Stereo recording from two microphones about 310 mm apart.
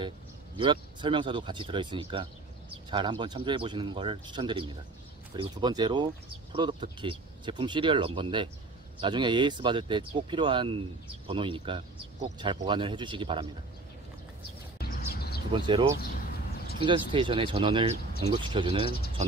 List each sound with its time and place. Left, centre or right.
0.6 s speech: centre
14.8 s a sound: left
15.5 s speech: centre